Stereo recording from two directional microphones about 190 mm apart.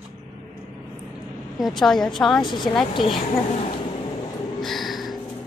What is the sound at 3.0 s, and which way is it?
Speech, centre (ahead or behind).